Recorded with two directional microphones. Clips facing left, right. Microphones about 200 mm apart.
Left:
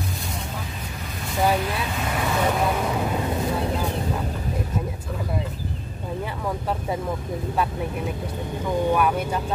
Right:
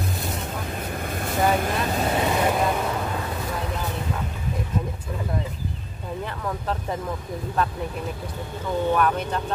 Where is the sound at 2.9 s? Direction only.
15° left (ahead or behind).